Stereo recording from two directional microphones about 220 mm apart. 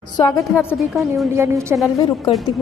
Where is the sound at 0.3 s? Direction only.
10° left (ahead or behind).